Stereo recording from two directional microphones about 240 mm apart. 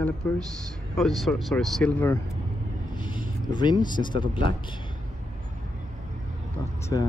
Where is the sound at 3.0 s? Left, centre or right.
Centre.